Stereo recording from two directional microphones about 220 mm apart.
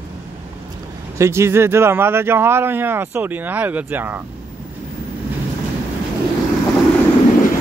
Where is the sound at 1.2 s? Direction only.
10° right (ahead or behind).